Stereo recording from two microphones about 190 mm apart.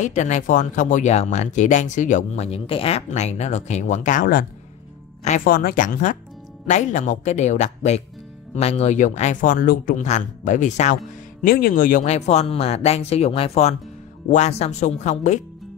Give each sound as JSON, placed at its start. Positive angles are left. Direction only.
{"t": 0.0, "sound": "speech", "side_deg": 40}
{"t": 11.4, "sound": "speech", "side_deg": 50}